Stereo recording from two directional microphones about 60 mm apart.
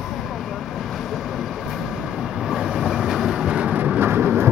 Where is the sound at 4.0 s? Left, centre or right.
Right.